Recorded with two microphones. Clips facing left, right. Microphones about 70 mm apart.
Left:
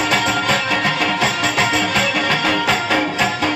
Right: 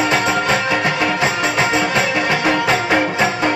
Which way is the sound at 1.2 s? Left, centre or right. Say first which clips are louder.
Right 1 dB; right.